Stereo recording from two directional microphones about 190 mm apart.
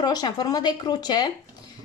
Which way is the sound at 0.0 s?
20° left (ahead or behind).